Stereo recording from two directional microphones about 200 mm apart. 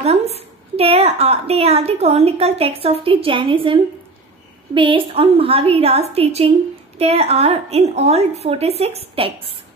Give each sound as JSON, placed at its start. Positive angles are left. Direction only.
{"t": 0.0, "sound": "a woman's voice", "side_deg": -30}